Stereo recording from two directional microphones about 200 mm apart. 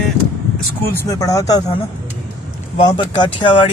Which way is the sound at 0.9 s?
15° left (ahead or behind).